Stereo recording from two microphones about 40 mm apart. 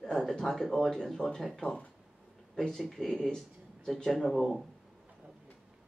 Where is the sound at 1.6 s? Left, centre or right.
Left.